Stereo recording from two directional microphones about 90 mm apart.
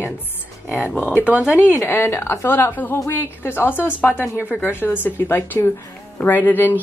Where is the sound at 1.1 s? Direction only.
15° right (ahead or behind).